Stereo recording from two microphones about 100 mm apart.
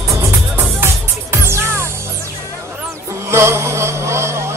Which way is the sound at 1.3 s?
25° right (ahead or behind).